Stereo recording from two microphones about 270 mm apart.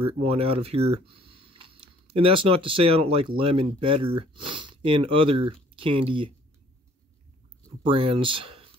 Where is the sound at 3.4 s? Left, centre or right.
Right.